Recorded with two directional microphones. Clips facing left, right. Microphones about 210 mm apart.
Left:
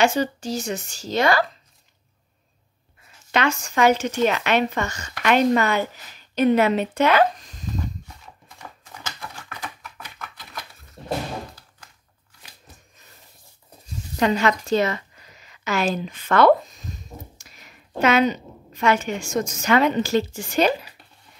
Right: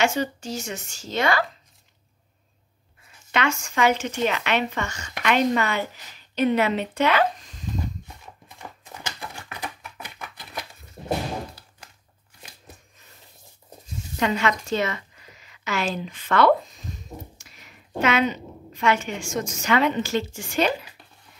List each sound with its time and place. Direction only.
0.0 s a woman's voice: 35° left (ahead or behind)
3.3 s a woman's voice: 35° left (ahead or behind)
14.2 s a woman's voice: 35° left (ahead or behind)
18.0 s a woman's voice: 40° left (ahead or behind)